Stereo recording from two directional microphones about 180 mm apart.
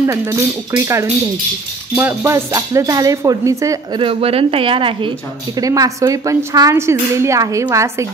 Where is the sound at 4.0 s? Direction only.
30° right (ahead or behind).